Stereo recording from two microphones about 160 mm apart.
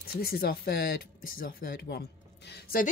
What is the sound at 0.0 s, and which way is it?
Speech, 75° left (ahead or behind).